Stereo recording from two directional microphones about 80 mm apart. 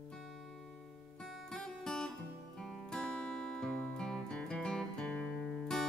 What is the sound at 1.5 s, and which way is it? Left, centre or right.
Music, centre.